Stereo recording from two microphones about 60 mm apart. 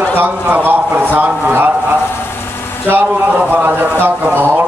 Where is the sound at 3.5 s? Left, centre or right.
Right.